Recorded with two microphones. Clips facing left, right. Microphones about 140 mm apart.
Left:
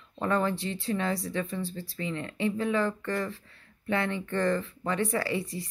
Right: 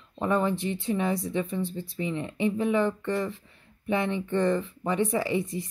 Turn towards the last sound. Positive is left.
turn(degrees=-20)  # may be behind; listen again after turning